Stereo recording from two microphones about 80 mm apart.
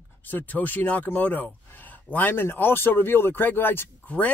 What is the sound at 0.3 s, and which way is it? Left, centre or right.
Speech, left.